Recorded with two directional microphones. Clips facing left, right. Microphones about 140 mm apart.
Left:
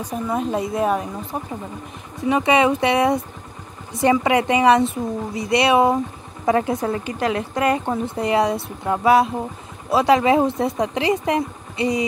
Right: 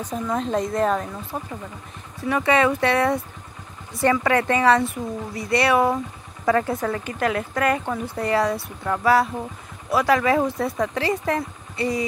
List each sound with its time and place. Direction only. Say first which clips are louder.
0.0 s speech: left 2 dB; 10° left (ahead or behind)